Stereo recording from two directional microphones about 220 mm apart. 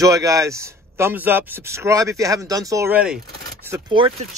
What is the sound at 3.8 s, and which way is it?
Speech, 20° right (ahead or behind).